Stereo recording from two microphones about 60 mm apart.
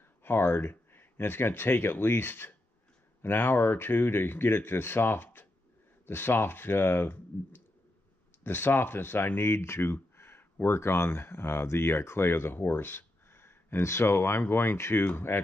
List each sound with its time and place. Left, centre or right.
0.2 s speech: left